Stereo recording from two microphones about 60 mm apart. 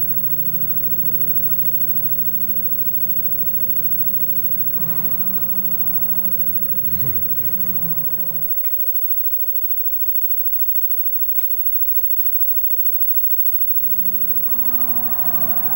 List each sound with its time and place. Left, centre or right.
0.0 s vehicle: centre
13.9 s vehicle: centre
14.5 s vehicle: centre